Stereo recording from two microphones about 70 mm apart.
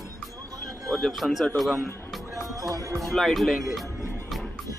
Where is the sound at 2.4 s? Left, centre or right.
Right.